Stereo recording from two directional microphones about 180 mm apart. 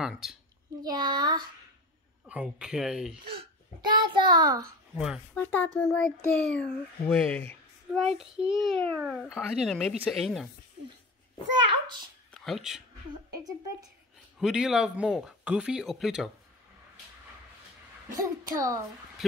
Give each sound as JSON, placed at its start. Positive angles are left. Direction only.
{"t": 0.0, "sound": "a child's voice", "side_deg": -5}
{"t": 0.8, "sound": "a child's voice", "side_deg": -25}
{"t": 2.2, "sound": "a child's voice", "side_deg": -5}
{"t": 3.9, "sound": "a child's voice", "side_deg": -25}
{"t": 4.9, "sound": "a child's voice", "side_deg": -5}
{"t": 5.3, "sound": "a child's voice", "side_deg": 10}
{"t": 8.1, "sound": "a child's voice", "side_deg": -5}
{"t": 12.4, "sound": "speech", "side_deg": 0}
{"t": 13.3, "sound": "a child's voice", "side_deg": -20}
{"t": 14.4, "sound": "a child's voice", "side_deg": -5}
{"t": 18.1, "sound": "a child's voice", "side_deg": -20}